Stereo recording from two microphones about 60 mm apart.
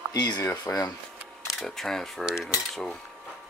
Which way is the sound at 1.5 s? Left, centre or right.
Centre.